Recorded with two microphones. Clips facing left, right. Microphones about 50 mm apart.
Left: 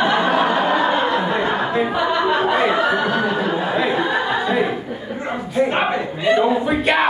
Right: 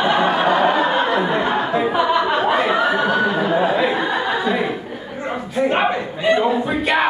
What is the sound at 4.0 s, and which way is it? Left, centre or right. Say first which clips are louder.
A capella: left 1 dB; centre.